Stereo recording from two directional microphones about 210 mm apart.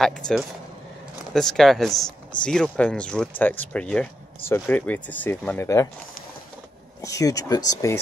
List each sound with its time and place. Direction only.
0.0 s speech: centre (ahead or behind)
7.0 s speech: 15° left (ahead or behind)